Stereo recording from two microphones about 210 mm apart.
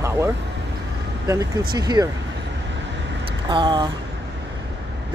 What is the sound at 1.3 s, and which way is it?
Speech, 15° right (ahead or behind).